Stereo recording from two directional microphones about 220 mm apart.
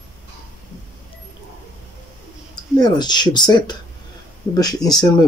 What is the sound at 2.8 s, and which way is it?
Speech, 20° left (ahead or behind).